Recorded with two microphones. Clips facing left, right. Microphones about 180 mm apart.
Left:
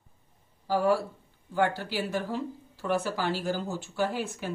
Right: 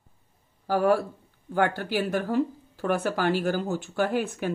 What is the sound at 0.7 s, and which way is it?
Speech, 55° right (ahead or behind).